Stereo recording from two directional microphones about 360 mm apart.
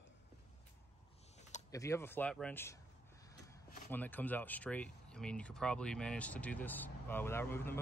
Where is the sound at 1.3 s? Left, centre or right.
Centre.